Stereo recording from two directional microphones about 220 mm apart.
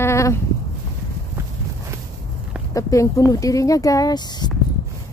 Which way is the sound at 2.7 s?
15° left (ahead or behind).